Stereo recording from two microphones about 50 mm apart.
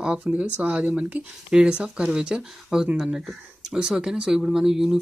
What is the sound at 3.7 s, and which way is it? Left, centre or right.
Speech, centre.